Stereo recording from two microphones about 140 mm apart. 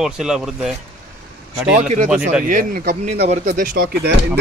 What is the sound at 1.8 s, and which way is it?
Speech, 60° right (ahead or behind).